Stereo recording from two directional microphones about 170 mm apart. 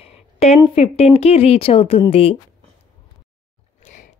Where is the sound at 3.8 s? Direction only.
45° left (ahead or behind).